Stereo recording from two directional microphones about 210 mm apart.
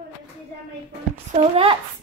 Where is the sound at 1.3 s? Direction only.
25° right (ahead or behind).